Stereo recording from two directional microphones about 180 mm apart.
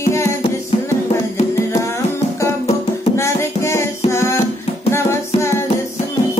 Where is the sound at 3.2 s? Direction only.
15° left (ahead or behind).